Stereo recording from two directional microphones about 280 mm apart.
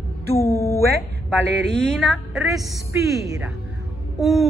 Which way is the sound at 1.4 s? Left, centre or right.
Right.